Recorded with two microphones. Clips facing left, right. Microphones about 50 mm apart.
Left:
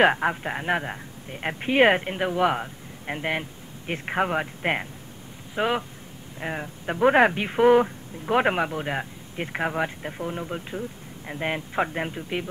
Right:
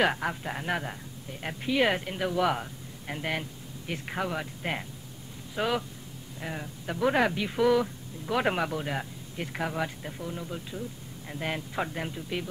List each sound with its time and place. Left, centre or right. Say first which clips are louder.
0.0 s speech: left 7 dB; left
5.6 s speech: left 4 dB; left